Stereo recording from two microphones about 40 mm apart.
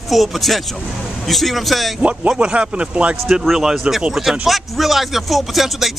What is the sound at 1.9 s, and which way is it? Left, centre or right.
Speech, right.